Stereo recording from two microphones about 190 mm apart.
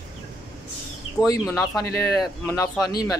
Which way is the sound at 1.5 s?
15° left (ahead or behind).